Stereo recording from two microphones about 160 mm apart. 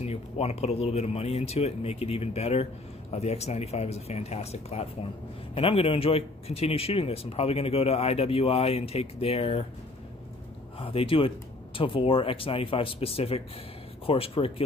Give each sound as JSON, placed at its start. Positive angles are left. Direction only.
{"t": 0.0, "sound": "speech", "side_deg": 40}
{"t": 10.8, "sound": "speech", "side_deg": 35}